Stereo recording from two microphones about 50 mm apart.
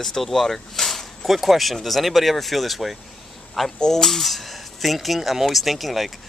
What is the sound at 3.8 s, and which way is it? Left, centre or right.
Speech, centre.